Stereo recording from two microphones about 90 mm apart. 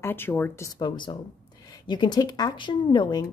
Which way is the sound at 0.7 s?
55° left (ahead or behind).